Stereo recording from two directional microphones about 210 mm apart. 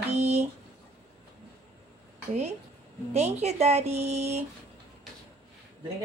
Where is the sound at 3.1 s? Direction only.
30° right (ahead or behind).